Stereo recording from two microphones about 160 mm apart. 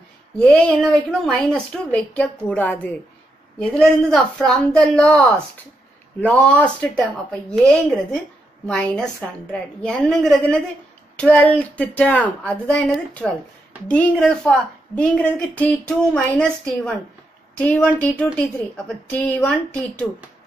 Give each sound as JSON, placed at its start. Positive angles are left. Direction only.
{"t": 0.4, "sound": "a woman's voice", "side_deg": 5}
{"t": 17.9, "sound": "speech", "side_deg": 10}